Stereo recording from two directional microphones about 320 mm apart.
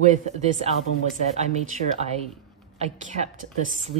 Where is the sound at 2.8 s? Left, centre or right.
Right.